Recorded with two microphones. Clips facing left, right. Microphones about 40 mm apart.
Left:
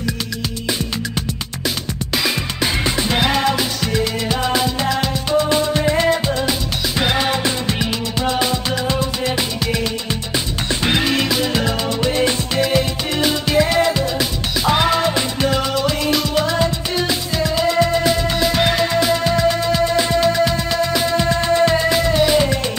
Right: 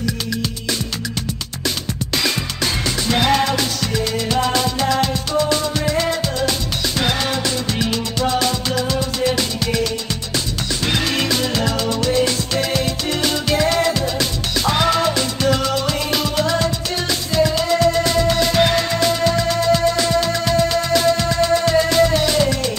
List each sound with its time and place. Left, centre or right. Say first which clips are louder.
2.1 s music: left 1 dB; centre
2.8 s music: left 1 dB; left
3.2 s music: right 2 dB; centre
5.5 s music: left 3 dB; left
15.9 s music: left 2 dB; centre